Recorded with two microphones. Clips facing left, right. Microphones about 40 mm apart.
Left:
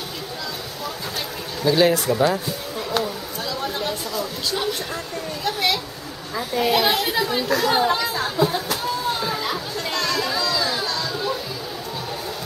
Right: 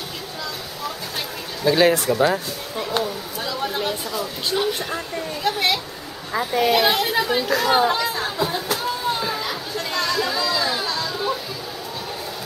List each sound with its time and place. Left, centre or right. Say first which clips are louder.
1.6 s a sound: right 1 dB; centre
6.5 s chatter: right 1 dB; centre
9.8 s children playing: right 1 dB; centre